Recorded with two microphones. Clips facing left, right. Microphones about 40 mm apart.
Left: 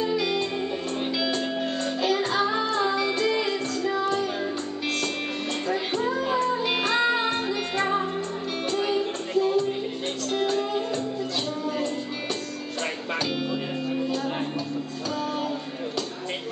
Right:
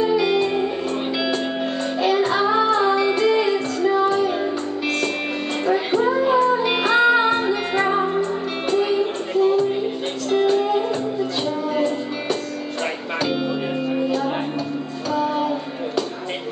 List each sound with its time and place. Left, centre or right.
0.0 s music: centre
2.0 s music: centre
5.7 s music: centre
15.1 s music: centre